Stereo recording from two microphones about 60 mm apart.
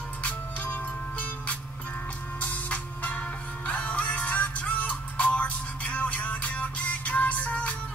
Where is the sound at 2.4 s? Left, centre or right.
Left.